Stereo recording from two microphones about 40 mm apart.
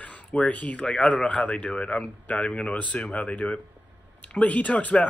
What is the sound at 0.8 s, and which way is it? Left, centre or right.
A man's voice, left.